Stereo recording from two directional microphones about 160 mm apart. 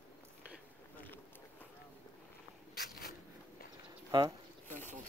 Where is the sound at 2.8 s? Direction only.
80° left.